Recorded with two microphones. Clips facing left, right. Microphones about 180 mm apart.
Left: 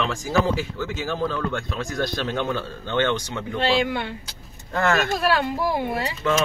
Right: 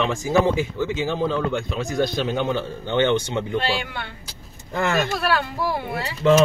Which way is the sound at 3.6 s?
15° left (ahead or behind).